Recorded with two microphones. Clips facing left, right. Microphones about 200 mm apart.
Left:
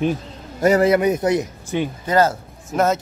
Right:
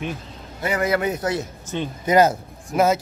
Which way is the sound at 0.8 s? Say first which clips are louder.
Left 6 dB; 20° left (ahead or behind).